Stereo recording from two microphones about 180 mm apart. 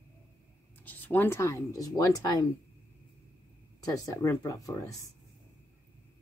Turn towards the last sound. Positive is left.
turn(degrees=20)  # may be behind; listen again after turning